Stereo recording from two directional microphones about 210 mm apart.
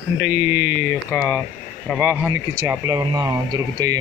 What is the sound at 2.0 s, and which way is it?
Speech, 15° right (ahead or behind).